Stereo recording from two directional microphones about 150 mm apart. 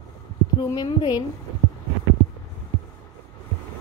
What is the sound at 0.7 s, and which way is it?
Speech, 25° left (ahead or behind).